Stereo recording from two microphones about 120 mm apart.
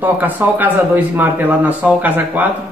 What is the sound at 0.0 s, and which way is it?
Speech, 15° right (ahead or behind).